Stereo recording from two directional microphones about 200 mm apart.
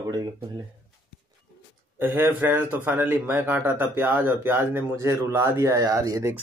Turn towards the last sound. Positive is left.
turn(degrees=-15)  # may be behind; listen again after turning